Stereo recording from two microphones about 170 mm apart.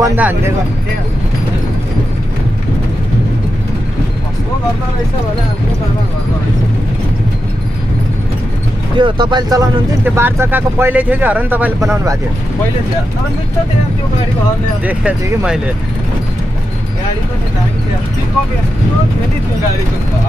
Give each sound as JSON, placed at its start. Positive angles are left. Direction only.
{"t": 0.0, "sound": "speech", "side_deg": -10}
{"t": 8.9, "sound": "speech", "side_deg": -25}
{"t": 10.0, "sound": "speech", "side_deg": -15}
{"t": 14.9, "sound": "speech", "side_deg": -10}